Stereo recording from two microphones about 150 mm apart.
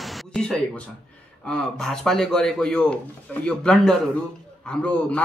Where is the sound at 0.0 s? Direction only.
Centre (ahead or behind).